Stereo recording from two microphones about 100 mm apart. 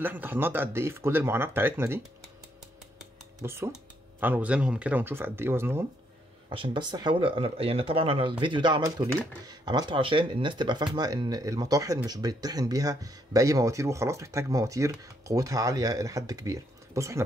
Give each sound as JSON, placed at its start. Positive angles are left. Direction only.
{"t": 0.0, "sound": "speech", "side_deg": -20}
{"t": 3.4, "sound": "speech", "side_deg": -25}
{"t": 6.5, "sound": "speech", "side_deg": -55}
{"t": 8.8, "sound": "speech", "side_deg": -40}